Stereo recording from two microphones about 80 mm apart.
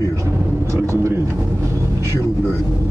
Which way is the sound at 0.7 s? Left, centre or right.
Right.